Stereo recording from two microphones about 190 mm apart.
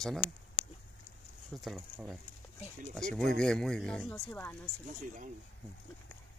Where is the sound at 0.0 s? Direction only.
5° left (ahead or behind).